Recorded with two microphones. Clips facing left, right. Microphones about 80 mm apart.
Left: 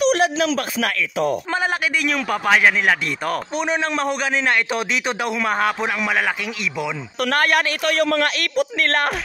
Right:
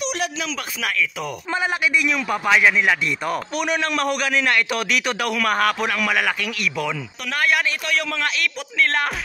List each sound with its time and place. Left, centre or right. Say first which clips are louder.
0.1 s a man's voice: left 8 dB; left
3.5 s a man's voice: left 1 dB; left
7.2 s speech: left 3 dB; left